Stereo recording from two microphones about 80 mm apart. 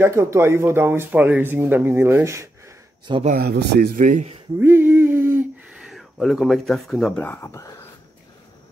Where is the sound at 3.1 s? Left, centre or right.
Right.